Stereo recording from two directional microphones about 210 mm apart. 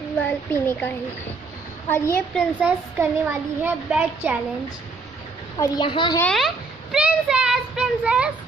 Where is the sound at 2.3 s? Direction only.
10° right (ahead or behind).